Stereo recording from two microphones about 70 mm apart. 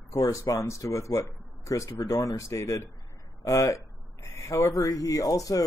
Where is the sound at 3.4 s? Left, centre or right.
Left.